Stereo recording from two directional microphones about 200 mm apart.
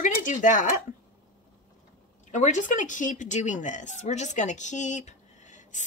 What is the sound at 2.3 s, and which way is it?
Speech, 35° left (ahead or behind).